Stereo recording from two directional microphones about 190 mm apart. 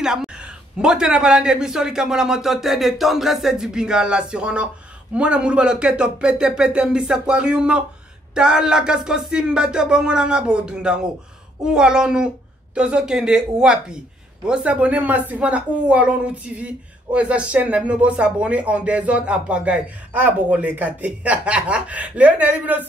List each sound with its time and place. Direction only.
0.0 s a man's voice: 5° right (ahead or behind)